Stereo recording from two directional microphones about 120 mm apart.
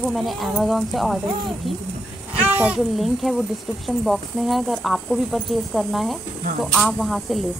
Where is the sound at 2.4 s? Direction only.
10° right (ahead or behind).